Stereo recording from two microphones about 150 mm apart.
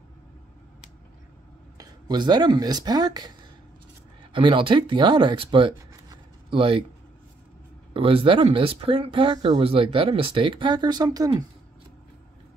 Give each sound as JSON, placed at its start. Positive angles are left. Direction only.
{"t": 1.8, "sound": "speech", "side_deg": -30}
{"t": 7.9, "sound": "speech", "side_deg": -35}